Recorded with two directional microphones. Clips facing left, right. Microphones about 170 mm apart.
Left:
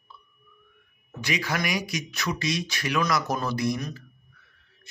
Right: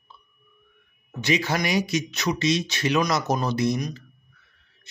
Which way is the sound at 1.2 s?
25° right (ahead or behind).